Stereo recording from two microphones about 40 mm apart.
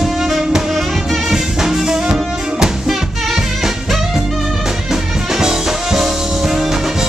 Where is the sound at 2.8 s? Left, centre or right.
Centre.